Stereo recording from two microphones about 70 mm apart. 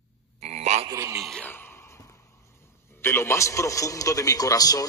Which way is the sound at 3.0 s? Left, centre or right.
Left.